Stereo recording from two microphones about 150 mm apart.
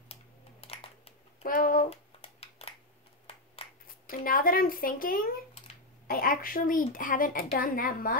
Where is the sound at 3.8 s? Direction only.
70° left (ahead or behind).